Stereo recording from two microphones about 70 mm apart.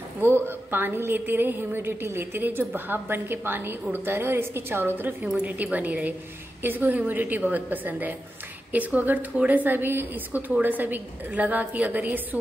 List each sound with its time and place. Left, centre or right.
0.2 s a woman's voice: right